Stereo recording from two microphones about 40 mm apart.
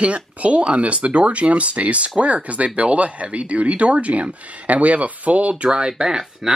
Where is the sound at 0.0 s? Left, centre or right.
Right.